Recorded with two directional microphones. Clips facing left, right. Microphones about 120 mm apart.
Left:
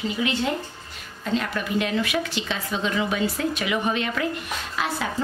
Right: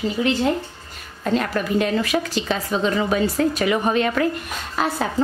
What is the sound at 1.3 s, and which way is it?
A woman's voice, 45° right (ahead or behind).